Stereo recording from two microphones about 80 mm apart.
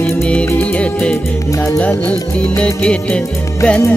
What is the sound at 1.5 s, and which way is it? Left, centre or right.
Music, left.